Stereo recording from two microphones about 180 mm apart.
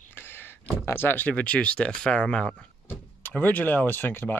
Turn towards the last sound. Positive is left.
turn(degrees=10)  # may be behind; listen again after turning